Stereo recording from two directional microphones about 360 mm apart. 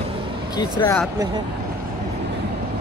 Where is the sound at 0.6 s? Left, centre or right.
Centre.